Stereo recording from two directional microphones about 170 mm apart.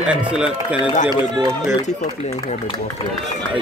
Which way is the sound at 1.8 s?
45° left (ahead or behind).